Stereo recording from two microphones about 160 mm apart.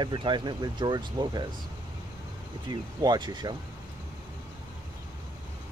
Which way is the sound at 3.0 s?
25° right (ahead or behind).